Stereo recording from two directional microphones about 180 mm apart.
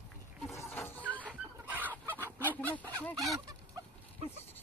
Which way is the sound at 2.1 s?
10° right (ahead or behind).